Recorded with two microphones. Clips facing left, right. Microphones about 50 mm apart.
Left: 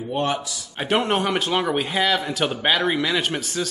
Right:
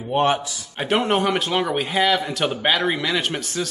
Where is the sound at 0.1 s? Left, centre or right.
Right.